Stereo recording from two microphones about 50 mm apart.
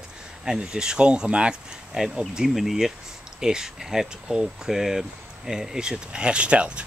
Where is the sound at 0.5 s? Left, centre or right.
Centre.